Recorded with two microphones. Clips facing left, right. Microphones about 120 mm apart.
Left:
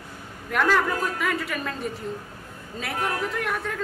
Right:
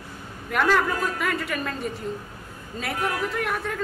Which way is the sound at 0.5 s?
Centre (ahead or behind).